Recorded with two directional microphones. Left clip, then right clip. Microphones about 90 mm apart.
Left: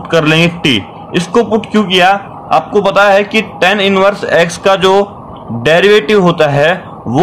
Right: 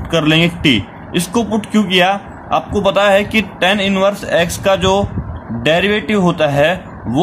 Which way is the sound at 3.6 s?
20° right (ahead or behind).